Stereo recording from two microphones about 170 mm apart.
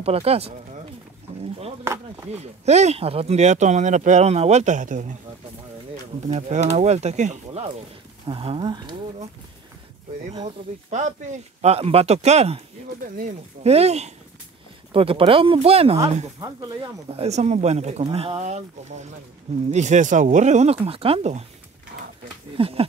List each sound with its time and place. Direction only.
0.0 s speech: 35° right (ahead or behind)
2.3 s speech: 40° right (ahead or behind)
6.2 s speech: 45° right (ahead or behind)
8.3 s speech: 30° right (ahead or behind)
10.4 s speech: 45° right (ahead or behind)
16.3 s speech: 25° right (ahead or behind)
17.2 s speech: 40° right (ahead or behind)
21.9 s a sound: 85° right
22.6 s speech: 35° right (ahead or behind)